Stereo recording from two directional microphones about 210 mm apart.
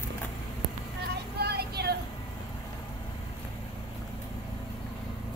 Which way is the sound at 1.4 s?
50° right (ahead or behind).